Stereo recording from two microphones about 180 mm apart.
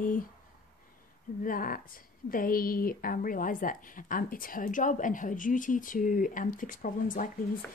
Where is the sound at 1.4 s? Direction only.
50° left (ahead or behind).